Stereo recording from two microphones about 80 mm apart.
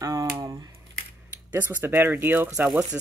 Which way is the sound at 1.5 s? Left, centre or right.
Right.